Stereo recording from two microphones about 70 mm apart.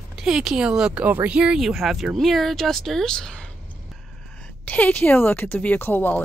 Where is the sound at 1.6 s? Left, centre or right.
Centre.